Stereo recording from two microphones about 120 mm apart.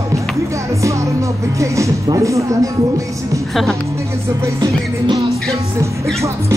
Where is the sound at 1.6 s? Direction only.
25° right (ahead or behind).